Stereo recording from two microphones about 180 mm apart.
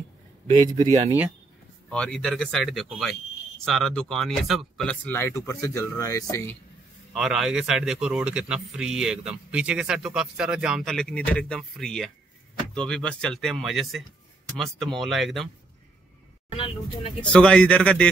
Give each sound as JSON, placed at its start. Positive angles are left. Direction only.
{"t": 1.9, "sound": "speech", "side_deg": 5}
{"t": 7.2, "sound": "speech", "side_deg": -5}
{"t": 16.4, "sound": "speech", "side_deg": 30}
{"t": 17.2, "sound": "speech", "side_deg": 5}